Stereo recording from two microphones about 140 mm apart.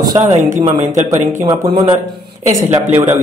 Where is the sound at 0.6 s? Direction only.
60° right (ahead or behind).